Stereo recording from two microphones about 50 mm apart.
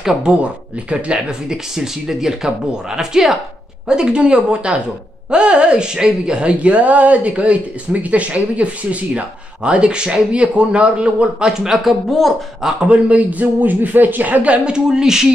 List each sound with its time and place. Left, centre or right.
0.0 s speech: centre
0.3 s speech: right
1.5 s speech: centre
11.7 s speech: centre
12.8 s a man's voice: right
14.4 s speech: right